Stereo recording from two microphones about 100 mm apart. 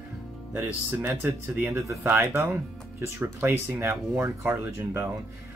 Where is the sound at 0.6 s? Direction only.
15° right (ahead or behind).